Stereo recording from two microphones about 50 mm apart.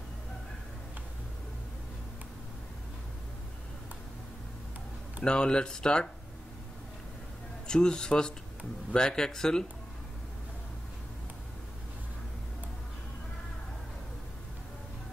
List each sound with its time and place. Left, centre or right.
5.2 s speech: centre
7.6 s speech: centre